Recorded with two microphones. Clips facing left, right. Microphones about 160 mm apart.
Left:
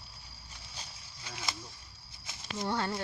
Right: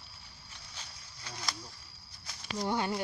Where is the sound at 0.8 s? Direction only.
5° left (ahead or behind).